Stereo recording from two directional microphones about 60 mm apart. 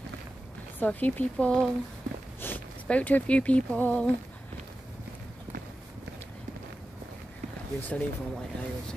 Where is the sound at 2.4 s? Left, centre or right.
Left.